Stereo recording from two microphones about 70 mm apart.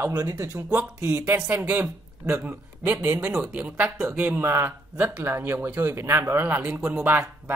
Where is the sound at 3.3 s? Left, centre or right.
Centre.